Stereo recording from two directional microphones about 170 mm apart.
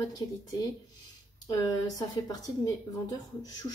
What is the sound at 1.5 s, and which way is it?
Speech, 20° left (ahead or behind).